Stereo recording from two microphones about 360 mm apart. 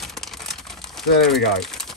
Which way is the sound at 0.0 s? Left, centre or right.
Centre.